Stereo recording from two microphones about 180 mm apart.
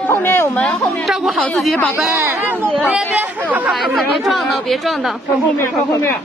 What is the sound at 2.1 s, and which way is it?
A woman's voice, 10° right (ahead or behind).